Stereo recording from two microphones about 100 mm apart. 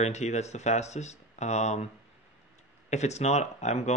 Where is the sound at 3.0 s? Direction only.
90° left.